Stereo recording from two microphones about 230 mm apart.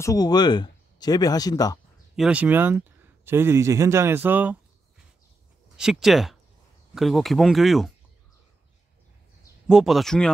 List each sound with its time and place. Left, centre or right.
0.0 s speech: centre
2.1 s speech: centre
5.8 s speech: centre
9.7 s speech: centre